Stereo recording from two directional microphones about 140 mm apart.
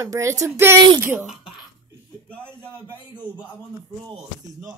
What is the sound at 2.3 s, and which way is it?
Speech, 10° left (ahead or behind).